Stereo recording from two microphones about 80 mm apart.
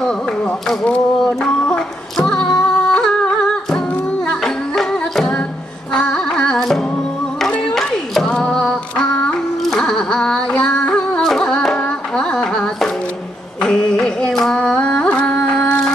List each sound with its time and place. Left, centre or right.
0.7 s female singing: centre
4.7 s music: centre
5.9 s carnatic music: centre
7.4 s a sound: centre
9.7 s music: centre
13.7 s carnatic music: centre